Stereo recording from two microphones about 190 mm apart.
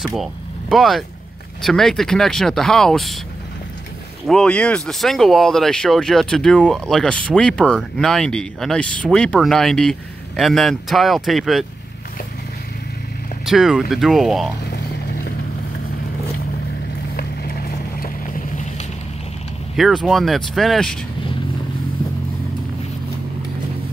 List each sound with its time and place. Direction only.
0.0 s speech: centre (ahead or behind)
4.3 s speech: 5° left (ahead or behind)
13.5 s speech: centre (ahead or behind)
14.7 s vehicle: 60° left (ahead or behind)
17.2 s clip-clop: 50° left (ahead or behind)
19.8 s speech: centre (ahead or behind)